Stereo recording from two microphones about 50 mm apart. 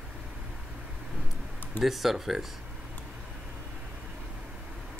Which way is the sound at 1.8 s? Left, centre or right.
Centre.